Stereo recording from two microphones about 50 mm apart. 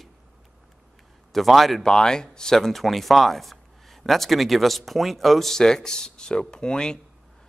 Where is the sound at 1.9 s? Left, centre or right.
Centre.